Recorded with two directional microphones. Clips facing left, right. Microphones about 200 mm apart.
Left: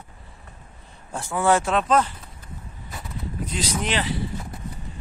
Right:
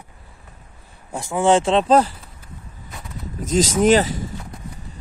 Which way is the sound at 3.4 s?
45° right (ahead or behind).